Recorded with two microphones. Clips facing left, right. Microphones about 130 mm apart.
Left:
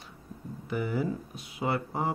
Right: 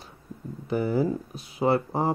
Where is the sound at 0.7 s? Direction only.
35° right (ahead or behind).